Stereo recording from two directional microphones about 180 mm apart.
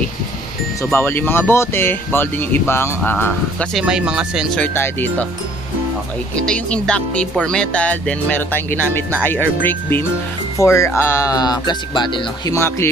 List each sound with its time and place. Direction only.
0.8 s speech: 10° left (ahead or behind)
3.8 s speech: 5° right (ahead or behind)
4.6 s speech: 10° left (ahead or behind)
6.4 s speech: 5° left (ahead or behind)